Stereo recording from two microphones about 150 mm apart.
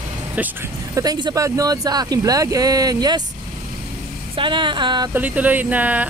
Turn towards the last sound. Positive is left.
turn(degrees=-10)  # may be behind; listen again after turning